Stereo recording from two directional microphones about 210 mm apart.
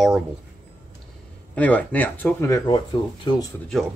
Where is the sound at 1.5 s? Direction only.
5° left (ahead or behind).